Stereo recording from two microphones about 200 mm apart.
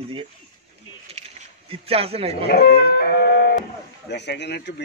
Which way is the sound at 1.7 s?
30° right (ahead or behind).